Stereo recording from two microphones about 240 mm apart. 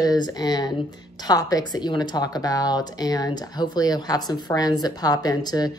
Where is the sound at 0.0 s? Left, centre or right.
Centre.